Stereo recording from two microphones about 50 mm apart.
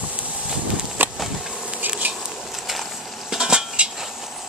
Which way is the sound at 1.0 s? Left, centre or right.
Right.